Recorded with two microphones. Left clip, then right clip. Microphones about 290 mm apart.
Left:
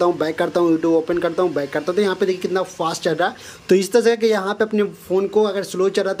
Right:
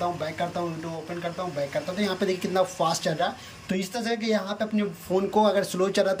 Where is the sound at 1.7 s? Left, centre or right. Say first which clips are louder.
Left 9 dB; centre.